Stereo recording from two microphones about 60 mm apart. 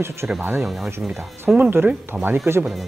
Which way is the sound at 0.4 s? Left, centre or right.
Right.